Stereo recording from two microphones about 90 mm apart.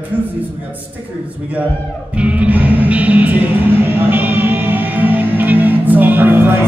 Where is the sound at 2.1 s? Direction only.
15° right (ahead or behind).